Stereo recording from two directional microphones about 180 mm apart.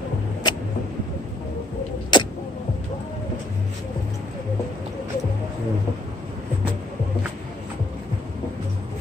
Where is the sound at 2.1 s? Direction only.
25° left (ahead or behind).